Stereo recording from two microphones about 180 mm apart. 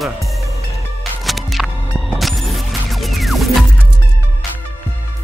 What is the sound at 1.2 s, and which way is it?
Music, centre (ahead or behind).